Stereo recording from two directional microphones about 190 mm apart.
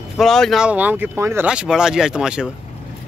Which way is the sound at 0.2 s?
Centre (ahead or behind).